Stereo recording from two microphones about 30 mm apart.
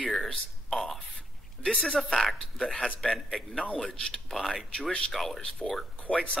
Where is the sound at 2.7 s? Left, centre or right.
Left.